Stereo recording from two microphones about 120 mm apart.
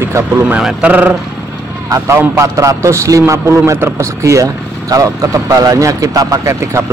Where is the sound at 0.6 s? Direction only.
5° right (ahead or behind).